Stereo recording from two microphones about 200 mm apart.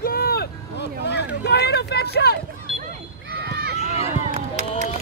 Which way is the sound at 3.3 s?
55° right (ahead or behind).